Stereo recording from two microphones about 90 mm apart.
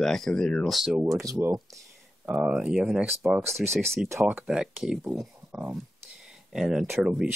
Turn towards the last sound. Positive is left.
turn(degrees=-5)  # may be behind; listen again after turning